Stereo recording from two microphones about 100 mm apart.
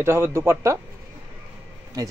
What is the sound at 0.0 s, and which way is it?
Speech, 25° right (ahead or behind).